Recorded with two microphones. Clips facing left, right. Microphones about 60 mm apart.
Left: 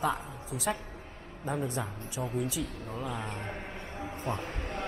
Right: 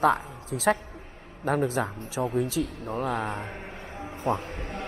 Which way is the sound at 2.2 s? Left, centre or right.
Right.